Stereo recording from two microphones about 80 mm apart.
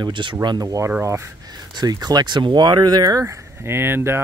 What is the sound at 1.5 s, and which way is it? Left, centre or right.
Speech, right.